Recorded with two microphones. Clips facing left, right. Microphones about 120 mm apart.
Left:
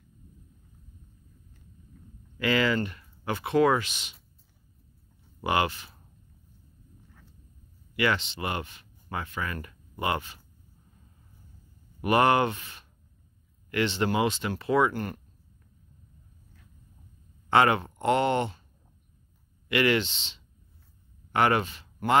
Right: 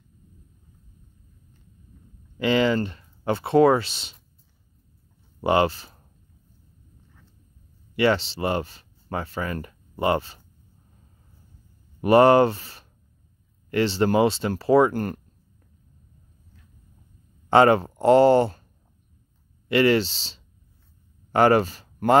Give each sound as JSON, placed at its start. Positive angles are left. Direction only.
{"t": 2.3, "sound": "speech", "side_deg": -25}
{"t": 5.4, "sound": "speech", "side_deg": -30}
{"t": 7.9, "sound": "speech", "side_deg": -30}
{"t": 12.0, "sound": "speech", "side_deg": -35}
{"t": 17.5, "sound": "speech", "side_deg": -35}
{"t": 19.7, "sound": "speech", "side_deg": -35}